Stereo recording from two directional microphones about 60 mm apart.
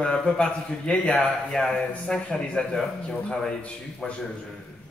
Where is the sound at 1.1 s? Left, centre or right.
Centre.